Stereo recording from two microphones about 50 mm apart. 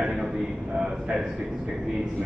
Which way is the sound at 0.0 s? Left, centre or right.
Centre.